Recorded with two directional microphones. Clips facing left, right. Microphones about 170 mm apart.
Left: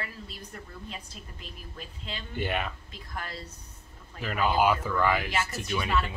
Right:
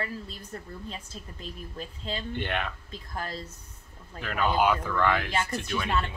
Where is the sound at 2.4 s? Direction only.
5° left (ahead or behind).